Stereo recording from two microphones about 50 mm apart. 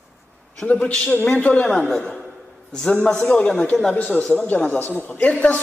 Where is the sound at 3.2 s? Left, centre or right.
Left.